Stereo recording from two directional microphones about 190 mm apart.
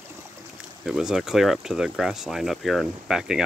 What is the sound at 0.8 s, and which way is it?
Speech, centre (ahead or behind).